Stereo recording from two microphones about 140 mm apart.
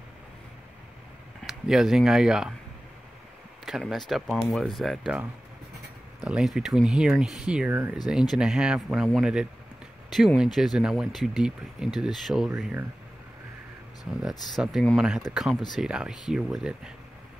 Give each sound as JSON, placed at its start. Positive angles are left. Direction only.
{"t": 1.4, "sound": "speech", "side_deg": -5}
{"t": 3.6, "sound": "speech", "side_deg": 0}
{"t": 14.5, "sound": "speech", "side_deg": 0}